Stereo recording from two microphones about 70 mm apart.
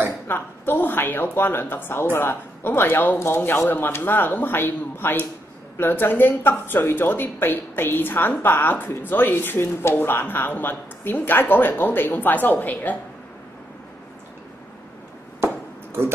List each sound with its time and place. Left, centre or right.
0.3 s a woman's voice: left
15.4 s chop: right